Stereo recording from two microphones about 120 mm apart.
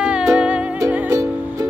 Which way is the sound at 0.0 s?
5° right (ahead or behind).